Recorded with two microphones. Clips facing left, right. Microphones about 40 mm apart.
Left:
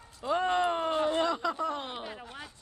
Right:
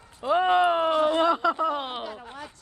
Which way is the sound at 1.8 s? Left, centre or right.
Right.